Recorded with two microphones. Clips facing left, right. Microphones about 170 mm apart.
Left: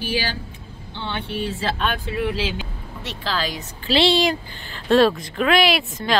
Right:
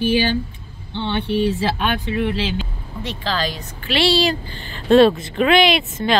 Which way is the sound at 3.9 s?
20° left (ahead or behind).